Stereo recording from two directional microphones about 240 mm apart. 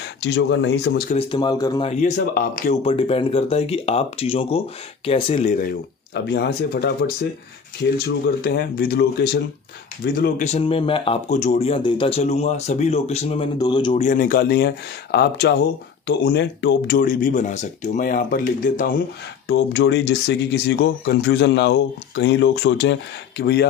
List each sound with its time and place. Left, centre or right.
0.2 s speech: left
1.1 s speech: centre
1.9 s speech: left
2.8 s speech: left
6.1 s speech: left
8.5 s speech: left; by 14.0 s centre
14.0 s speech: left
19.4 s speech: left